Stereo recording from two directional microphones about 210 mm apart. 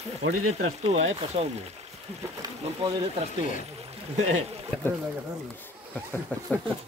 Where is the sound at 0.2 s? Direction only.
90° right.